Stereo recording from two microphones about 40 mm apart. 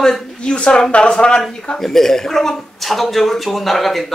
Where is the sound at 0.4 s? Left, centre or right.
Left.